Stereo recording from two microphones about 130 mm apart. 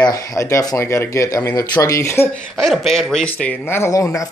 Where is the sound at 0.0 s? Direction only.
25° left (ahead or behind).